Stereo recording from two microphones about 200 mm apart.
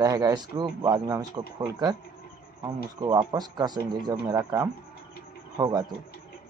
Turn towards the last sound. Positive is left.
turn(degrees=-20)  # may be behind; listen again after turning